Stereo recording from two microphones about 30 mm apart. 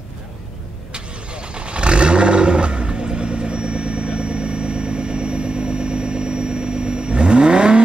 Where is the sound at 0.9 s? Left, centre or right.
Right.